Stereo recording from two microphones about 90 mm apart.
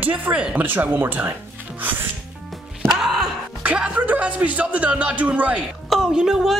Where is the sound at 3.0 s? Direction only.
5° right (ahead or behind).